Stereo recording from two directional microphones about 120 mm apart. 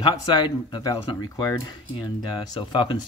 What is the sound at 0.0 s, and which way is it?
Speech, 40° left (ahead or behind).